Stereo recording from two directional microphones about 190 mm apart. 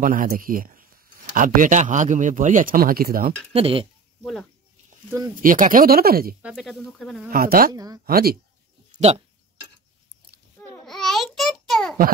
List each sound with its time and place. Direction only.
0.0 s speech: 45° right (ahead or behind)
3.5 s speech: 30° right (ahead or behind)
4.2 s speech: centre (ahead or behind)
5.4 s speech: 45° right (ahead or behind)
6.4 s speech: centre (ahead or behind)
7.2 s speech: 50° right (ahead or behind)
7.7 s speech: 20° right (ahead or behind)
8.0 s speech: 50° right (ahead or behind)
8.9 s speech: 30° right (ahead or behind)
10.9 s a sound: centre (ahead or behind)